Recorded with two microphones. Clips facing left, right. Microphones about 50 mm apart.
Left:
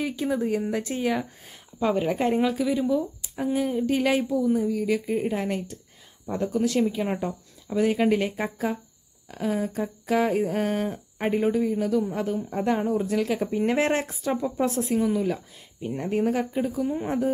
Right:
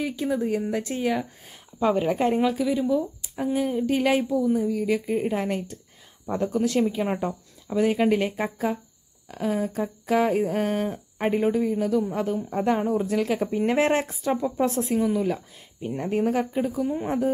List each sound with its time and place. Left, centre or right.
0.0 s speech: centre
1.8 s speech: centre
2.9 s a sound: centre
4.6 s speech: right
6.2 s speech: right
7.7 s a sound: centre
12.1 s speech: right
16.8 s speech: centre